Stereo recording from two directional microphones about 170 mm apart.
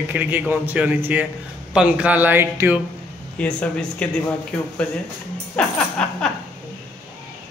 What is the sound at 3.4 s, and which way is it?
Speech, 5° left (ahead or behind).